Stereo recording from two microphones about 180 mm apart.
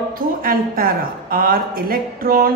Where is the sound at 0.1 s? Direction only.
55° right (ahead or behind).